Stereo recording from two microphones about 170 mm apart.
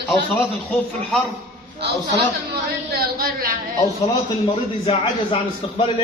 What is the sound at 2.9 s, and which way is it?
Speech, 65° right (ahead or behind).